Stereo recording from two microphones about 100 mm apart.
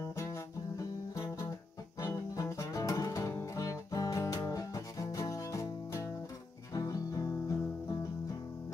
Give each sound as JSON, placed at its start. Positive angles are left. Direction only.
{"t": 0.1, "sound": "music", "side_deg": 30}